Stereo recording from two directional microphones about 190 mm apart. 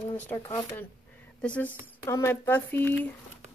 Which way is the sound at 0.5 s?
15° left (ahead or behind).